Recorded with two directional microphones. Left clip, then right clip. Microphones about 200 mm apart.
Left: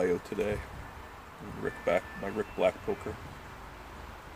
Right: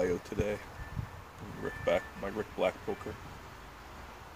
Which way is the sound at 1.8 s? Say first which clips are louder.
Left 1 dB; 10° right (ahead or behind).